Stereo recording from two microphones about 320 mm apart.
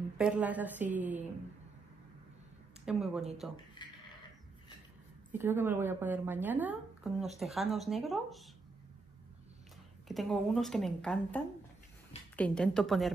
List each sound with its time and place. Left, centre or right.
0.2 s a woman's voice: centre
2.8 s a woman's voice: centre
3.8 s a sound: centre
5.3 s a woman's voice: centre
10.0 s a woman's voice: centre